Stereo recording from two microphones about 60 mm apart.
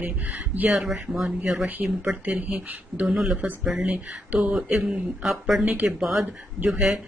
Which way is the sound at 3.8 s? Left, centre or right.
Centre.